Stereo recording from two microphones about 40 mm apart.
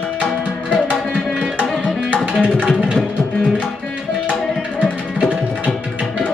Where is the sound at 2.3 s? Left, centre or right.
Right.